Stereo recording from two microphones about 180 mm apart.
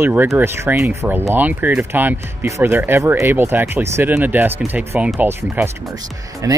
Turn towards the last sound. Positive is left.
turn(degrees=-20)  # may be behind; listen again after turning